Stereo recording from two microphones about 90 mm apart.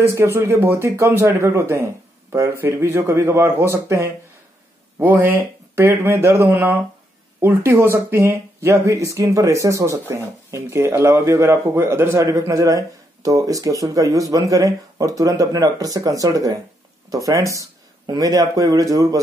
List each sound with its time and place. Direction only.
0.0 s speech: 30° right (ahead or behind)